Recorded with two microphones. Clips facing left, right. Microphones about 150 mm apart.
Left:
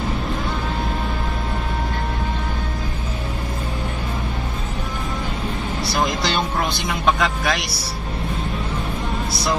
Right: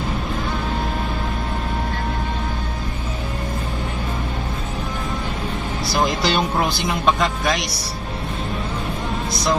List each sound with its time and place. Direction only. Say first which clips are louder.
5.9 s speech: right 2 dB; centre (ahead or behind)